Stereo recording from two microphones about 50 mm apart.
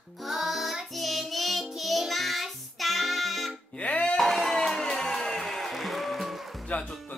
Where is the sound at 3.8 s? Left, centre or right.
Left.